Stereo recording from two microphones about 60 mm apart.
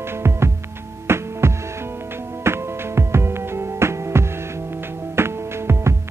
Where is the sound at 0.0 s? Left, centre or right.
Right.